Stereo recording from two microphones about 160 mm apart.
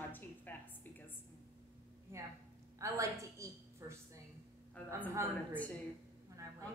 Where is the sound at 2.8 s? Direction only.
20° right (ahead or behind).